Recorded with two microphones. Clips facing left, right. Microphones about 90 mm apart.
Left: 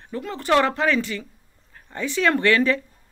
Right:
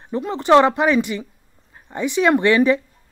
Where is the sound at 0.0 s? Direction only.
20° right (ahead or behind).